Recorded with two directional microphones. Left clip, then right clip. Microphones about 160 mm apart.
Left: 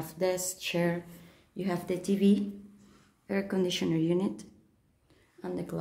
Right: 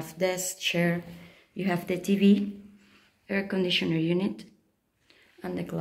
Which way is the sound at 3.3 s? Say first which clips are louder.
Right 3 dB; 15° left (ahead or behind).